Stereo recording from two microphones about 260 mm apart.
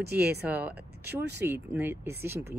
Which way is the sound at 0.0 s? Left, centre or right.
Right.